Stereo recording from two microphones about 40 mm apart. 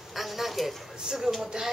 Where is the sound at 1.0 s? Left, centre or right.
Centre.